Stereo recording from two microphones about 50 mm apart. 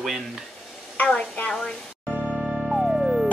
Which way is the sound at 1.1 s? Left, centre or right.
Left.